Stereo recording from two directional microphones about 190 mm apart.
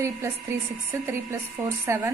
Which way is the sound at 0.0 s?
15° right (ahead or behind).